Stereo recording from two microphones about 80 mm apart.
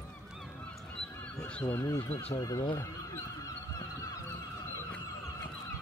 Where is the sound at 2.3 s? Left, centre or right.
Left.